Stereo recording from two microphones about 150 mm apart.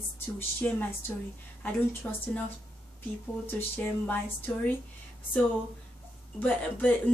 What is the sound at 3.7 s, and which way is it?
Speech, 10° left (ahead or behind).